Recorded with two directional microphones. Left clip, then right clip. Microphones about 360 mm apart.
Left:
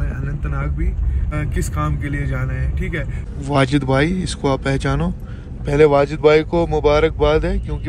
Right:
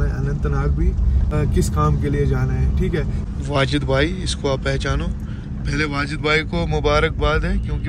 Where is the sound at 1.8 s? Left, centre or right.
Centre.